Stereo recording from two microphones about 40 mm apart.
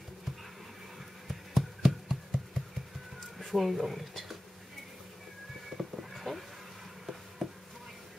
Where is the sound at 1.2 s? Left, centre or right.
Centre.